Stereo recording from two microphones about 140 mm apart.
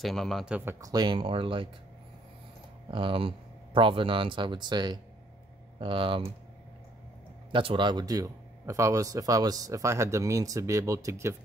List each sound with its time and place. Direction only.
0.0 s a man's voice: centre (ahead or behind)
0.6 s speech: 20° right (ahead or behind); by 1.7 s 40° right (ahead or behind)
2.9 s speech: 40° right (ahead or behind)
7.5 s speech: 35° right (ahead or behind); by 11.3 s 20° right (ahead or behind)